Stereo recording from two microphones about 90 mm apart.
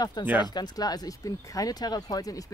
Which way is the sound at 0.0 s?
50° left (ahead or behind).